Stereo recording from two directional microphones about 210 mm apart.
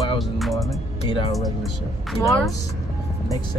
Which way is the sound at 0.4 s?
Centre (ahead or behind).